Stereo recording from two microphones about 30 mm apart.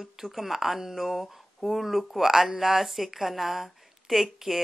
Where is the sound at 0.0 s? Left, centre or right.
Centre.